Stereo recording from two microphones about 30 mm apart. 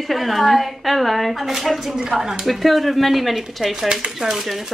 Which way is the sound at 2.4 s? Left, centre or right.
Centre.